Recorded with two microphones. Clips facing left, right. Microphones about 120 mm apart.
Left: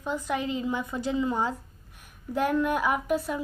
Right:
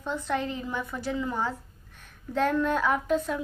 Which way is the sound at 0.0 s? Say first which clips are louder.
Even; 10° left (ahead or behind).